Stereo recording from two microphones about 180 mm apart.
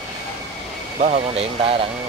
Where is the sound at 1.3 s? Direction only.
35° right (ahead or behind).